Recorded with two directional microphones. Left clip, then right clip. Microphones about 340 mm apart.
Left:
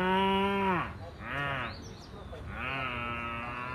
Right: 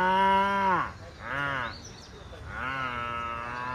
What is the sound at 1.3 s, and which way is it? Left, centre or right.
Crow, centre.